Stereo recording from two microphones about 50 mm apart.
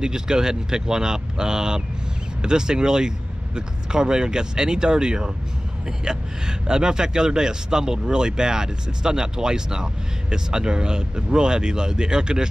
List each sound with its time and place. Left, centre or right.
0.0 s speech: centre